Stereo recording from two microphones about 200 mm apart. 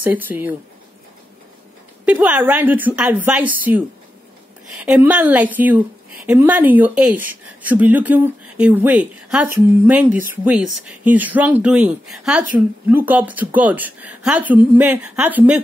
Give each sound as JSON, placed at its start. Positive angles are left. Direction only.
{"t": 0.0, "sound": "a woman's voice", "side_deg": -10}
{"t": 2.0, "sound": "a woman's voice", "side_deg": -5}